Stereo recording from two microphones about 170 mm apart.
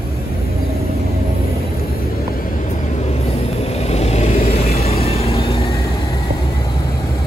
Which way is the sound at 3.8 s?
40° left (ahead or behind).